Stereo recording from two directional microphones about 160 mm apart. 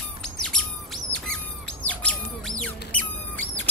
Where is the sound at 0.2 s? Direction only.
5° left (ahead or behind).